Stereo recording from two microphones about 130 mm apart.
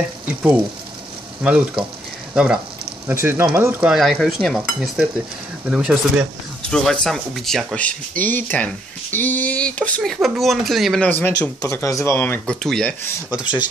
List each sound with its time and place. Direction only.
1.4 s speech: 10° right (ahead or behind)
2.3 s stir: 5° right (ahead or behind)
3.1 s speech: 20° right (ahead or behind)
3.8 s stir: 5° right (ahead or behind)
5.7 s speech: 10° right (ahead or behind)
6.7 s speech: 5° left (ahead or behind)
11.1 s speech: 15° left (ahead or behind)
12.5 s stir: centre (ahead or behind)
13.3 s speech: 10° right (ahead or behind)